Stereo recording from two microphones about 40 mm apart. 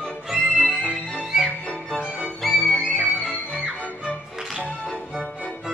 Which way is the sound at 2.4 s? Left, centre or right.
Centre.